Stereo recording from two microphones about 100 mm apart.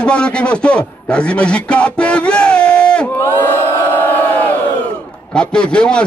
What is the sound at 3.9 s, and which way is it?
Crowd, 15° left (ahead or behind).